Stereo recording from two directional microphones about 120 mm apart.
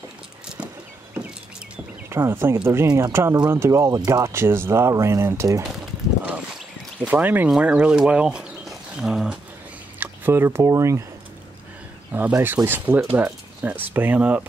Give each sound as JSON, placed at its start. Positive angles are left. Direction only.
{"t": 2.0, "sound": "speech", "side_deg": -20}
{"t": 7.0, "sound": "speech", "side_deg": -15}
{"t": 9.9, "sound": "speech", "side_deg": -20}
{"t": 12.1, "sound": "speech", "side_deg": -15}